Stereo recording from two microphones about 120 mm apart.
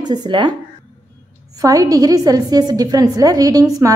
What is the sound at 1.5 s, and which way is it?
A woman's voice, 30° right (ahead or behind).